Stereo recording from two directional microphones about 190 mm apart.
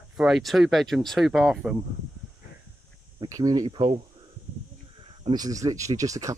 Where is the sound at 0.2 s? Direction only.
Centre (ahead or behind).